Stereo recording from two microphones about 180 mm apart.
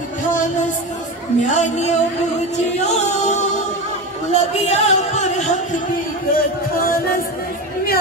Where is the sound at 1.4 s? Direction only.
40° left (ahead or behind).